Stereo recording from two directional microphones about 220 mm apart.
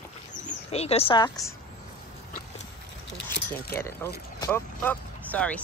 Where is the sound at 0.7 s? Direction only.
25° left (ahead or behind).